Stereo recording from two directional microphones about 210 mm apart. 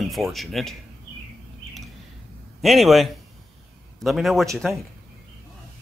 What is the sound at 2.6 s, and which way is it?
Speech, centre (ahead or behind).